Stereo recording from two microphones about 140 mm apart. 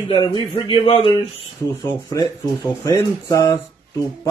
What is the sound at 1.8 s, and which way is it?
Speech, 25° left (ahead or behind).